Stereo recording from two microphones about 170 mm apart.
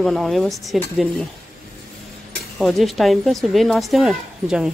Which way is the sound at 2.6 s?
Centre (ahead or behind).